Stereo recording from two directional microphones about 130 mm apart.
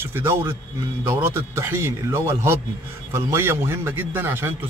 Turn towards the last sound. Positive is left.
turn(degrees=-20)  # may be behind; listen again after turning